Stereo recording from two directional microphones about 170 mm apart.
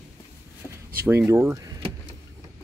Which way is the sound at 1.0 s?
15° right (ahead or behind).